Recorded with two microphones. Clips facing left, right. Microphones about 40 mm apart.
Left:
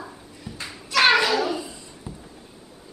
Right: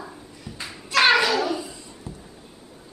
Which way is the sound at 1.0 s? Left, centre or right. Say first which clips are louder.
Even; centre.